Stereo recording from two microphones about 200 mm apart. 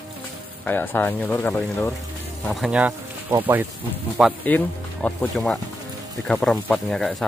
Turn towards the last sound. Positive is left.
turn(degrees=0)  # may be behind; listen again after turning